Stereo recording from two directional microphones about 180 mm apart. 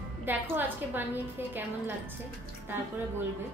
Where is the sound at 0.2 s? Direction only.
10° right (ahead or behind).